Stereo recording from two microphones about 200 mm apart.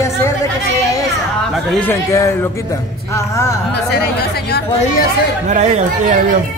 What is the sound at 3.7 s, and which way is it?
Speech, 55° left (ahead or behind).